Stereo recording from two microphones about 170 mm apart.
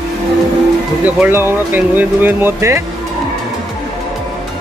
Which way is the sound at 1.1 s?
10° right (ahead or behind).